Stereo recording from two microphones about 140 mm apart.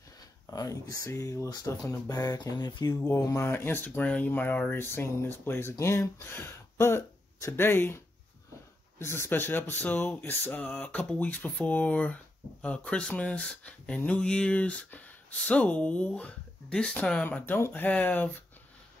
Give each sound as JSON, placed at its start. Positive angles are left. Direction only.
{"t": 0.5, "sound": "speech", "side_deg": 25}
{"t": 9.0, "sound": "speech", "side_deg": 20}